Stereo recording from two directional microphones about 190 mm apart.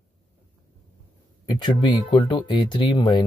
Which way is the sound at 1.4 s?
25° left (ahead or behind).